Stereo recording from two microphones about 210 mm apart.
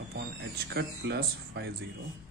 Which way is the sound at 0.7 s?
50° right (ahead or behind).